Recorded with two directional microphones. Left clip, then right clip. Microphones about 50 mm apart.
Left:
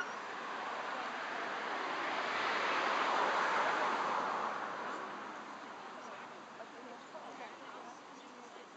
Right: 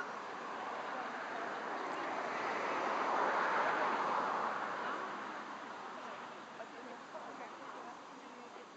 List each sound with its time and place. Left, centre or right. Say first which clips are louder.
0.2 s vehicle: left 1 dB; centre
2.4 s vehicle: left 3 dB; right
3.0 s vehicle: left 1 dB; centre